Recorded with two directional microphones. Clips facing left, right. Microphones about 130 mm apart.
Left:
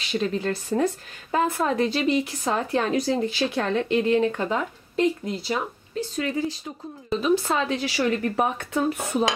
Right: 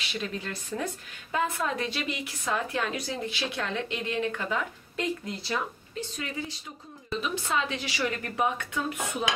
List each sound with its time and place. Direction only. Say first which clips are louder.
0.1 s speech: left 10 dB; 35° left (ahead or behind)